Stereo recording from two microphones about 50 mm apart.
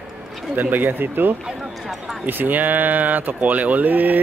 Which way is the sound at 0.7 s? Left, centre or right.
Right.